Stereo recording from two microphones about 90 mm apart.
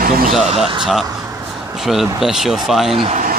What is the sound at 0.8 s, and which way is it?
Speech, centre (ahead or behind).